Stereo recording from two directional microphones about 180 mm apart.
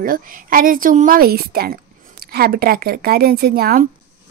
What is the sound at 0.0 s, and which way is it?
Speech, 50° right (ahead or behind).